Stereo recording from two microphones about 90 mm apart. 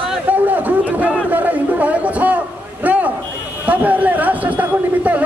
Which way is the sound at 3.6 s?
20° right (ahead or behind).